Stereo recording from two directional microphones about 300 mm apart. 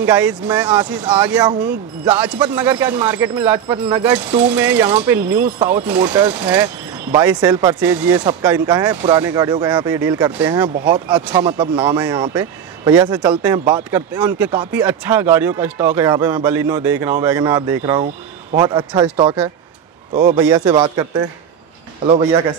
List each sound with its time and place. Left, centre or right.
0.0 s speech: centre; by 20.3 s right
20.3 s speech: centre
22.0 s speech: centre